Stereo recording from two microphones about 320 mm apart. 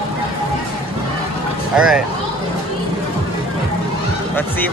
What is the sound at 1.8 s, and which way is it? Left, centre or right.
Speech, centre.